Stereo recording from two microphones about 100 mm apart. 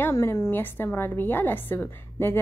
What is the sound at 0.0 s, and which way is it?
A woman's voice, 25° left (ahead or behind).